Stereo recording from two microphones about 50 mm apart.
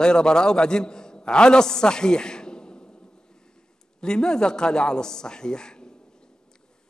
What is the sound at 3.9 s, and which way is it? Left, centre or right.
A man's voice, centre.